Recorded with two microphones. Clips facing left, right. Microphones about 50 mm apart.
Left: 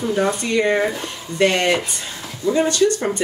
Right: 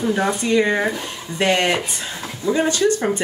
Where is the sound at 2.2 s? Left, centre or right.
Right.